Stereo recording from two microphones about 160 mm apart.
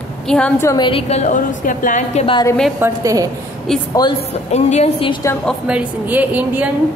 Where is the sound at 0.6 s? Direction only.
20° left (ahead or behind).